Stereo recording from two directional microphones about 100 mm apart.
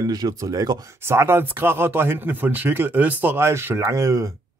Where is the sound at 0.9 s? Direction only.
25° right (ahead or behind).